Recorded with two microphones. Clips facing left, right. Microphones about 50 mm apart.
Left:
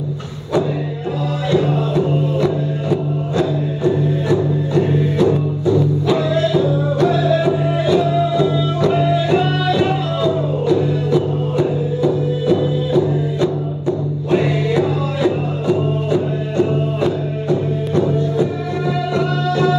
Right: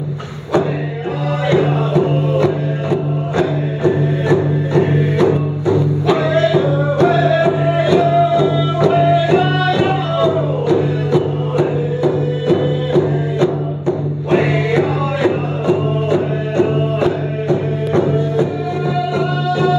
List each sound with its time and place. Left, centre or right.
1.5 s music: right
11.5 s music: right
19.1 s music: centre